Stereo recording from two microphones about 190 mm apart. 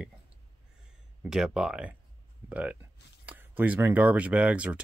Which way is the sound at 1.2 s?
5° right (ahead or behind).